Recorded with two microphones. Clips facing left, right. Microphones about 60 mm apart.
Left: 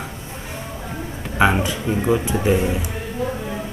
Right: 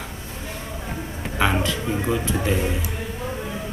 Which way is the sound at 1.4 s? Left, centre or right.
Centre.